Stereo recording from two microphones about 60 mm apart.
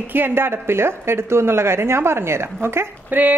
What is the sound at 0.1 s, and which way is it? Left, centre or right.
A woman's voice, right.